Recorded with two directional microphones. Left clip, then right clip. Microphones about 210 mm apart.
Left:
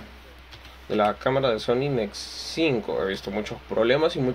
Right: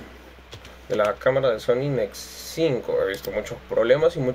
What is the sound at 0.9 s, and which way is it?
Speech, 40° left (ahead or behind).